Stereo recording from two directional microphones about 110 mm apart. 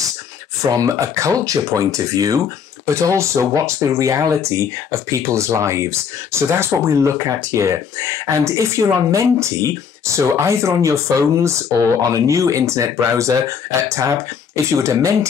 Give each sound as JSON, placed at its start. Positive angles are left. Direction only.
{"t": 0.6, "sound": "speech", "side_deg": -30}